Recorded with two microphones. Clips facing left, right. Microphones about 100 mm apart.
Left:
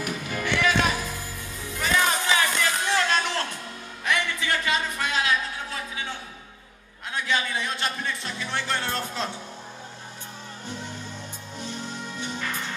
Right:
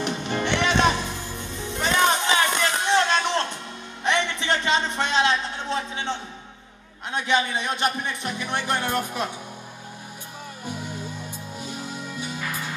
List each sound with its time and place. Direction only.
0.0 s music: 25° right (ahead or behind)
4.0 s a sound: 25° right (ahead or behind)
7.1 s a man's voice: 20° right (ahead or behind)
10.7 s music: 10° right (ahead or behind)